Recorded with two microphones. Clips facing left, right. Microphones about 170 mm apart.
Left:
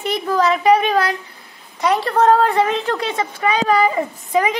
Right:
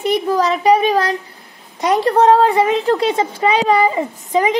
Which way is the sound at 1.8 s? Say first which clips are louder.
Right 3 dB; 40° right (ahead or behind).